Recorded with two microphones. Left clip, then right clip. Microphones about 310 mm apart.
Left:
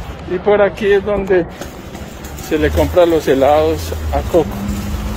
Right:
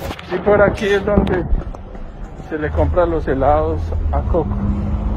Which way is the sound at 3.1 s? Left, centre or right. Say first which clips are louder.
Left 5 dB; left.